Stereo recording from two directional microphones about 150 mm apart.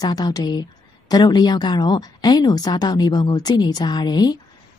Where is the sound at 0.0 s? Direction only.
25° left (ahead or behind).